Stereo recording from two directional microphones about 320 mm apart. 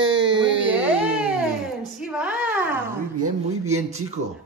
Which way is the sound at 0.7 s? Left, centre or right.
Centre.